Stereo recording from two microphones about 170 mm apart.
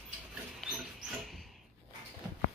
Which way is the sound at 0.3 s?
5° right (ahead or behind).